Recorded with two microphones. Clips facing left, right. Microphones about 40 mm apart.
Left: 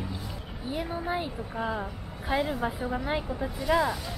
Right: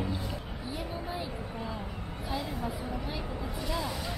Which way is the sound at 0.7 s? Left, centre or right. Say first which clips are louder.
Left 7 dB; left.